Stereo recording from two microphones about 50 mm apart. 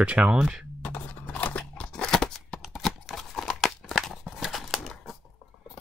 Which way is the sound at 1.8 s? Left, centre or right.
Centre.